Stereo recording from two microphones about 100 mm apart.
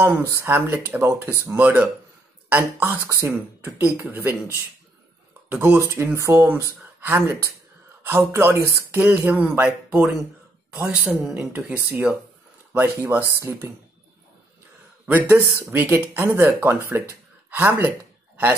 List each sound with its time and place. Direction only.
0.0 s speech: 20° right (ahead or behind)
15.0 s speech: 20° right (ahead or behind)
16.3 s speech: 25° right (ahead or behind)
16.9 s a sound: 20° right (ahead or behind)